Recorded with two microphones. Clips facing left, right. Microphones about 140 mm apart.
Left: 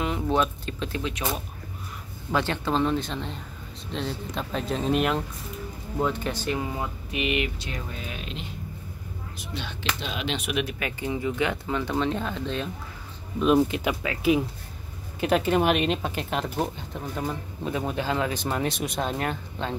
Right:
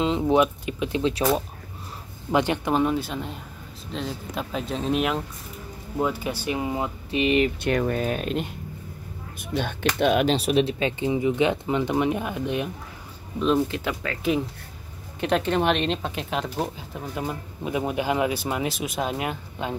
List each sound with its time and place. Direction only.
0.0 s speech: 20° right (ahead or behind)
1.0 s speech: 30° right (ahead or behind)
2.3 s speech: 15° right (ahead or behind); by 7.5 s 35° right (ahead or behind)
7.6 s speech: 65° right (ahead or behind)
8.0 s speech: 50° right (ahead or behind)
10.2 s speech: 35° right (ahead or behind); by 12.7 s 15° right (ahead or behind)
13.7 s speech: 15° left (ahead or behind)
15.1 s speech: 5° left (ahead or behind)